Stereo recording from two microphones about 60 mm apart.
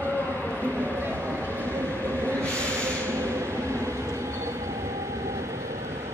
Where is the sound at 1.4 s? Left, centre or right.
Right.